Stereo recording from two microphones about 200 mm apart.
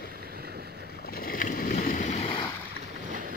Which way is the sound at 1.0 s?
50° left (ahead or behind).